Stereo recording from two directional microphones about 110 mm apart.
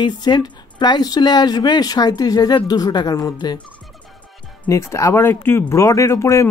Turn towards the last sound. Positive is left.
turn(degrees=25)  # may be behind; listen again after turning